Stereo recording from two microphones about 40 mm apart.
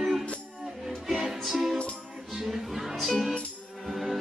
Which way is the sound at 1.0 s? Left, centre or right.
Centre.